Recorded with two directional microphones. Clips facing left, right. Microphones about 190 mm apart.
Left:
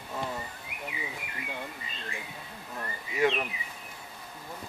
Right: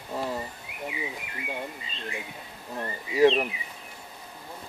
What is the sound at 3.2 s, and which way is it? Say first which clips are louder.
Speech: right 7 dB; 25° right (ahead or behind).